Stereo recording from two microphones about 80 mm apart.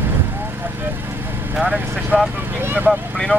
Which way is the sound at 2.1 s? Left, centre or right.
Centre.